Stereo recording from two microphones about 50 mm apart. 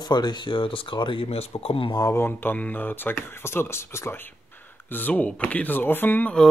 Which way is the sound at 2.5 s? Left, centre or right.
Left.